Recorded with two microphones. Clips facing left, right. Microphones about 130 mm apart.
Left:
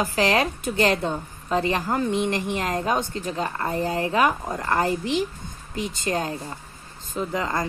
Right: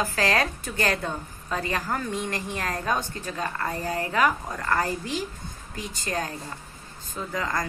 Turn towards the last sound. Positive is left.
turn(degrees=25)  # may be behind; listen again after turning